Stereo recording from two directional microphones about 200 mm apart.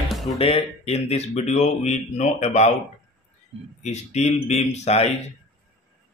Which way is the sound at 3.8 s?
35° left (ahead or behind).